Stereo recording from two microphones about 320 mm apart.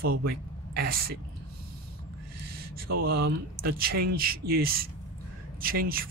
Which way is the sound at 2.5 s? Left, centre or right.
Right.